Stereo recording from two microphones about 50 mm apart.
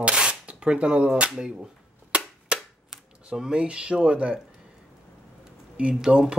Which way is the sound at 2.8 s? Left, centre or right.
Centre.